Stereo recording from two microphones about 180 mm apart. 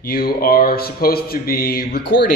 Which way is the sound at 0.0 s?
55° left (ahead or behind).